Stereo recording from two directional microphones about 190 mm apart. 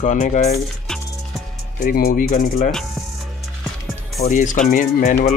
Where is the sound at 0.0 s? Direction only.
40° left (ahead or behind).